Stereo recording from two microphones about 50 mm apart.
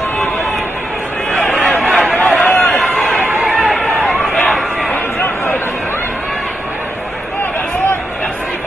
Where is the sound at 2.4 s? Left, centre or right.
Left.